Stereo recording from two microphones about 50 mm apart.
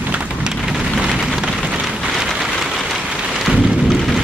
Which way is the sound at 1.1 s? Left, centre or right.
Centre.